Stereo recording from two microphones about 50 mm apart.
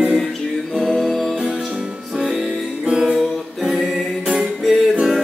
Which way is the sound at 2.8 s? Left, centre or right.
Centre.